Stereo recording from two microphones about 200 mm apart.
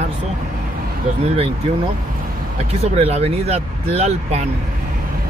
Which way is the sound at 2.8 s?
30° right (ahead or behind).